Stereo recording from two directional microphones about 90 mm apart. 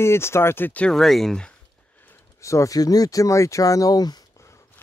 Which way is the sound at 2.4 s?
35° left (ahead or behind).